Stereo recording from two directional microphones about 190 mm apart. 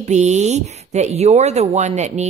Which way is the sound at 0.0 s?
35° right (ahead or behind).